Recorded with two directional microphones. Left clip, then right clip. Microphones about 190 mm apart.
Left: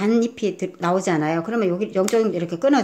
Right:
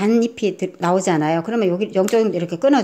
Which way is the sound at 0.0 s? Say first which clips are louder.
Right 3 dB; 15° right (ahead or behind).